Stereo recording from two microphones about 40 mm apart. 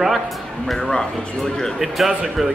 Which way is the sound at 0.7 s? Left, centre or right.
Centre.